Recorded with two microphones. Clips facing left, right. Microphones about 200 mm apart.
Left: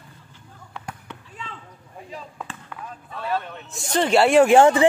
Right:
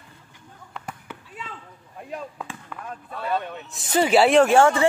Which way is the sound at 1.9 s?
55° right (ahead or behind).